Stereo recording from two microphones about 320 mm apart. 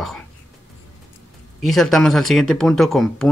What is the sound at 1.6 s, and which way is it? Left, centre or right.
Speech, centre.